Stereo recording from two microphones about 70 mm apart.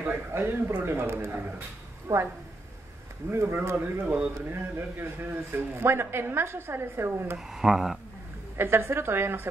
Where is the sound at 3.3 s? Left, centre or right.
Right.